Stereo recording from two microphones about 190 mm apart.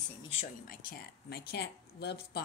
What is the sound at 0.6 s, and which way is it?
Speech, 50° left (ahead or behind).